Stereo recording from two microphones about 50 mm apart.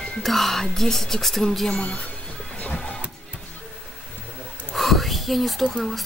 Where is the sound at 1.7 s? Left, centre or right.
Centre.